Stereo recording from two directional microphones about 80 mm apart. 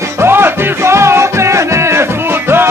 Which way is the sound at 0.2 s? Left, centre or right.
Right.